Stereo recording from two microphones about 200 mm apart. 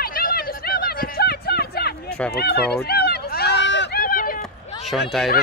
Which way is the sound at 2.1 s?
5° left (ahead or behind).